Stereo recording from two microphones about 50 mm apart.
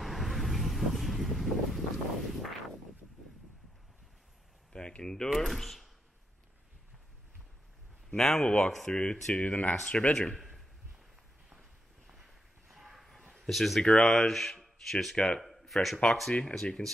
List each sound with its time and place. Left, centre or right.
0.0 s vehicle: centre
4.7 s speech: centre
8.2 s speech: centre
8.5 s speech: left
9.3 s speech: left
9.8 s speech: centre
12.1 s a sound: centre
14.0 s speech: centre
15.1 s speech: centre
15.4 s speech: centre